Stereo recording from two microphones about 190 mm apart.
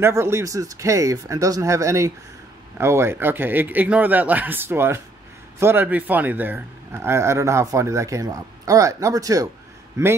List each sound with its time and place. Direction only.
0.0 s a man's voice: 15° right (ahead or behind)